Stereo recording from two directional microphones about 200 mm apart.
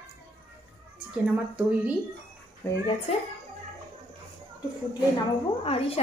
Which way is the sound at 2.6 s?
15° left (ahead or behind).